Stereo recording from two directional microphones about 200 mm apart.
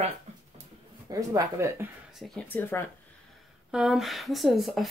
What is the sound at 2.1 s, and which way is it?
Speech, centre (ahead or behind).